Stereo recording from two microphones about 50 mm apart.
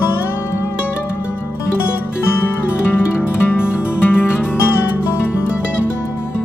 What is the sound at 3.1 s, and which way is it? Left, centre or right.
Music, left.